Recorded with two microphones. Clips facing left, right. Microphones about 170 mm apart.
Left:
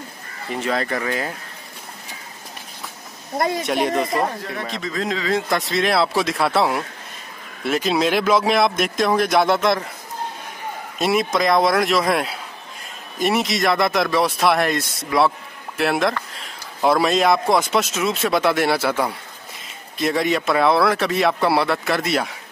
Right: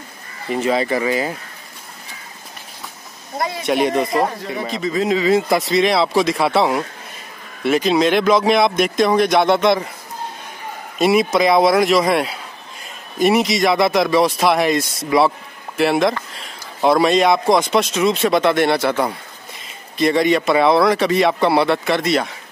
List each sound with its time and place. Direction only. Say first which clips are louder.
0.5 s speech: right 5 dB; 5° right (ahead or behind)
3.3 s speech: left 2 dB; 50° left (ahead or behind)
3.6 s speech: right 3 dB; centre (ahead or behind)
11.0 s speech: right 5 dB; centre (ahead or behind)